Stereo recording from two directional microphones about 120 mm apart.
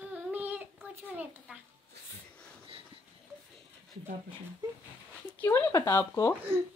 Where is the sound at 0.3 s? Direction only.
15° right (ahead or behind).